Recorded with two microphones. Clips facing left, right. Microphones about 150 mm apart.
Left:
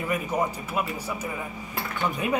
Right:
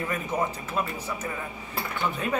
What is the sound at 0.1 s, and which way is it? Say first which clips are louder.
A man's voice: left 4 dB; 10° left (ahead or behind).